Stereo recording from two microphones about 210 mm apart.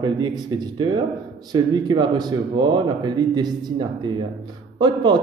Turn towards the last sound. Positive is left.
turn(degrees=-20)  # may be behind; listen again after turning